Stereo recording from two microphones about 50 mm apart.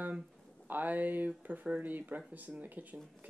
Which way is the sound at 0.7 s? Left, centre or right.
Right.